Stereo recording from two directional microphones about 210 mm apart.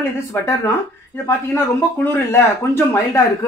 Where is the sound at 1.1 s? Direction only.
10° left (ahead or behind).